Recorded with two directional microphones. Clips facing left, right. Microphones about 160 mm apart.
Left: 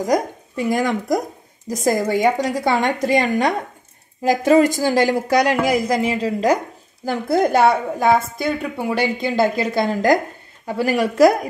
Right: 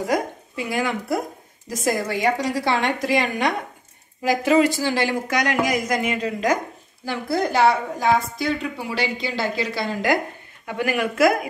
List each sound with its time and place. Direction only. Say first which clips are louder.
0.0 s a woman's voice: left 4 dB; 40° left (ahead or behind)
7.4 s a woman's voice: left 2 dB; 50° left (ahead or behind)
10.7 s speech: left 4 dB; 35° left (ahead or behind)